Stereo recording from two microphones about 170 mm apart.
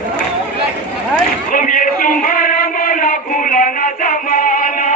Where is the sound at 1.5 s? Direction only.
50° left (ahead or behind).